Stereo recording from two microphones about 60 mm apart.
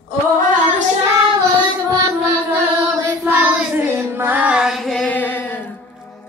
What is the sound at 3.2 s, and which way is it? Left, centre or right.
Child singing, right.